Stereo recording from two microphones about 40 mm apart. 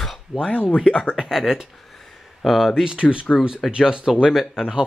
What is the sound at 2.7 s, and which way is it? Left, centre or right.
Speech, right.